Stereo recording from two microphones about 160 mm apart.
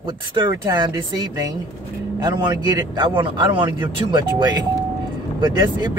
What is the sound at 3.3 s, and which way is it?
Speech, 30° right (ahead or behind).